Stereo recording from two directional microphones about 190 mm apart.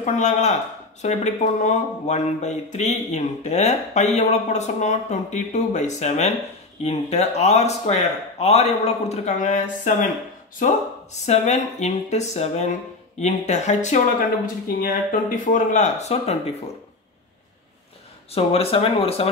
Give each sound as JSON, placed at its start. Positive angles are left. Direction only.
{"t": 0.0, "sound": "speech", "side_deg": 40}
{"t": 11.2, "sound": "speech", "side_deg": 35}
{"t": 18.3, "sound": "speech", "side_deg": 30}